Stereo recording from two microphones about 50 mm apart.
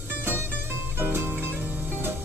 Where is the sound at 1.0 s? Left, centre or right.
Right.